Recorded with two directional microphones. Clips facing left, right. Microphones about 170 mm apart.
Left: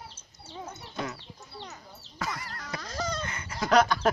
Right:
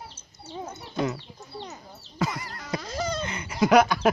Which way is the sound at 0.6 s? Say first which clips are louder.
Right 7 dB; 25° right (ahead or behind).